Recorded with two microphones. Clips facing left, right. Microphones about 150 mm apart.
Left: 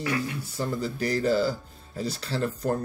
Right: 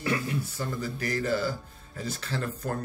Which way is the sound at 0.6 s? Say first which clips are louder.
Left 4 dB; 30° left (ahead or behind).